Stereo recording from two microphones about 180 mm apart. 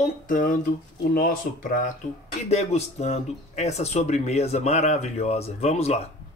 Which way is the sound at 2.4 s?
35° left (ahead or behind).